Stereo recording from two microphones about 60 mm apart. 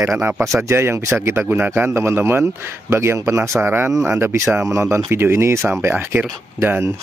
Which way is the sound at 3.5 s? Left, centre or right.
Right.